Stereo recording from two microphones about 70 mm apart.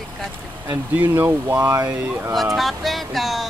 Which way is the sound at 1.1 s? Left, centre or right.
Right.